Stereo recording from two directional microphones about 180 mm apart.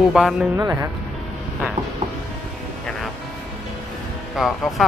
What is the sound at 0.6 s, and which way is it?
Speech, 20° right (ahead or behind).